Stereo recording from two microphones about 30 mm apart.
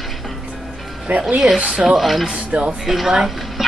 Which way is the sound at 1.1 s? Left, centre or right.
Right.